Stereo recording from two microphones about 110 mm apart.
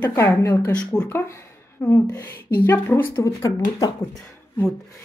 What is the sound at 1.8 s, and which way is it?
Speech, 20° left (ahead or behind).